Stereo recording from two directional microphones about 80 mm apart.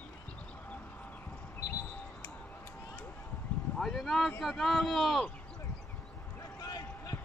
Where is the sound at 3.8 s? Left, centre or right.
Centre.